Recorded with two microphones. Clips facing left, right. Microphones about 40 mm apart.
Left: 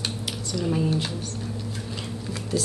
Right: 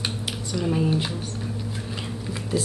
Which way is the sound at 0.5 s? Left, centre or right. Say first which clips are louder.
Right 1 dB; centre.